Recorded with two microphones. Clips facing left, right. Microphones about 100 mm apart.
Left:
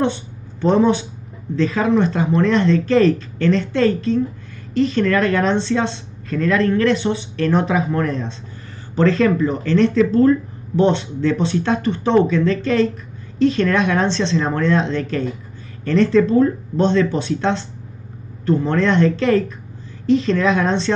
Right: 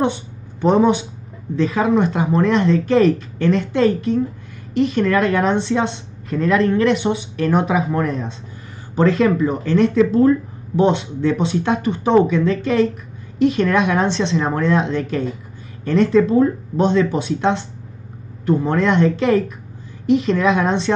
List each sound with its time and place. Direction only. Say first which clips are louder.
0.0 s a sound: even; 15° right (ahead or behind)
1.6 s a woman's voice: even; 15° right (ahead or behind)
20.4 s a woman's voice: right 1 dB; 15° right (ahead or behind)